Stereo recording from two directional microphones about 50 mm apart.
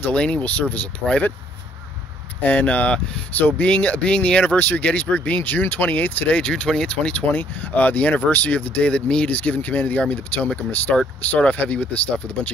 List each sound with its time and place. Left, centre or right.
0.0 s speech: left
2.4 s speech: left
4.6 s speech: left
6.3 s speech: left